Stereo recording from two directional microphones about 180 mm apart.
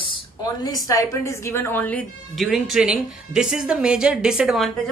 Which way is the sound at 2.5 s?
5° right (ahead or behind).